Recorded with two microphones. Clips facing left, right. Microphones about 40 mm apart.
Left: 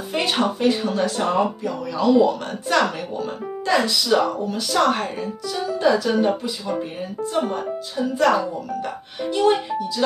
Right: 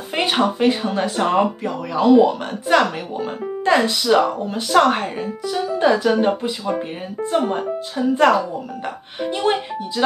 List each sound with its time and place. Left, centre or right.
0.1 s speech: right
1.3 s speech: right
2.7 s speech: right
3.6 s speech: right
6.2 s speech: right
9.3 s speech: right